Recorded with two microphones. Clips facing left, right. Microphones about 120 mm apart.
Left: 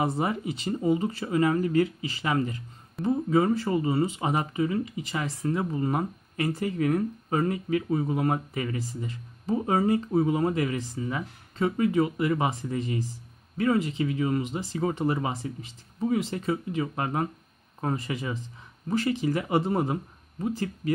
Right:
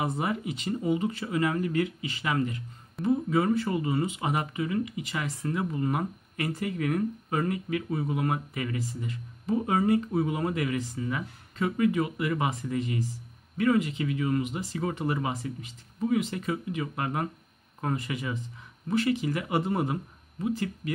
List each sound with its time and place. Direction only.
0.0 s speech: 30° left (ahead or behind)